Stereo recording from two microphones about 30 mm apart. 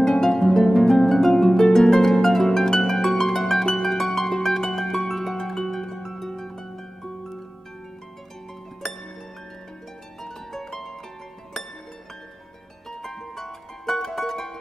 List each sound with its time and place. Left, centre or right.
0.0 s harp: centre
3.7 s music: centre
8.8 s music: centre
10.2 s harp: centre
13.0 s music: centre